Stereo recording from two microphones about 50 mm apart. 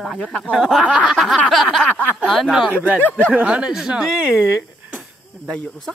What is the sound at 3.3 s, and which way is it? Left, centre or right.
Speech, right.